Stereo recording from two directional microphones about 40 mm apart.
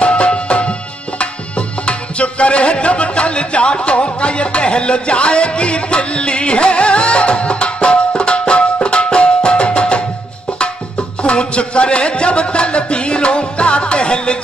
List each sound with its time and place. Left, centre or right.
0.0 s music: left